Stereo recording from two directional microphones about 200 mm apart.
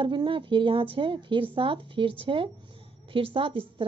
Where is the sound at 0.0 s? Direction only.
25° right (ahead or behind).